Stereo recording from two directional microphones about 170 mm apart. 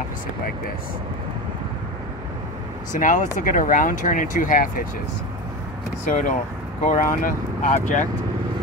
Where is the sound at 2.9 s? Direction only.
50° left (ahead or behind).